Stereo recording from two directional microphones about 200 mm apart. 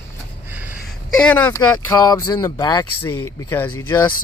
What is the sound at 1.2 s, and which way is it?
Speech, 10° left (ahead or behind).